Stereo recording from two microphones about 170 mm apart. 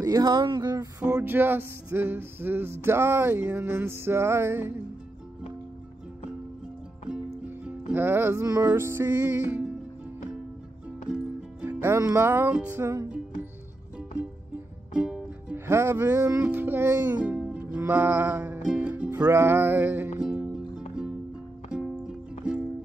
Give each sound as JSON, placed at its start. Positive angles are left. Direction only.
{"t": 0.0, "sound": "a sound", "side_deg": -20}
{"t": 1.0, "sound": "music", "side_deg": -10}
{"t": 7.9, "sound": "music", "side_deg": -10}
{"t": 11.1, "sound": "music", "side_deg": -5}
{"t": 15.0, "sound": "music", "side_deg": -5}
{"t": 15.5, "sound": "music", "side_deg": -15}